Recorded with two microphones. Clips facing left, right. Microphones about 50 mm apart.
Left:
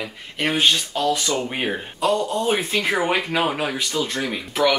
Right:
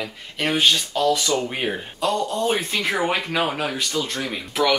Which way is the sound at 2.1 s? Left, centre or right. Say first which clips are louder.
Left 1 dB; left.